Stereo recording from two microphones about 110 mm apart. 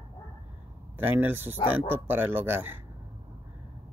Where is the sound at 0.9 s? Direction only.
20° right (ahead or behind).